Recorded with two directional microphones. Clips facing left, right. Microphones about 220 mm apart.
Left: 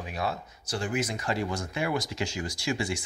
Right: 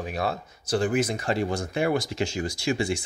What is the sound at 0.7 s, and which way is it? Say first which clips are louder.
Speech: right 7 dB; 55° right (ahead or behind).